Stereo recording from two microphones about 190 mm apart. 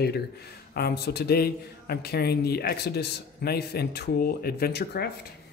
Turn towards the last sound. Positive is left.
turn(degrees=55)  # may be behind; listen again after turning